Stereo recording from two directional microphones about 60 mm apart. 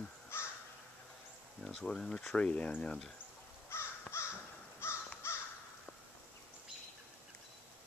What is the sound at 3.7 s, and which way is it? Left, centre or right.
Crow, left.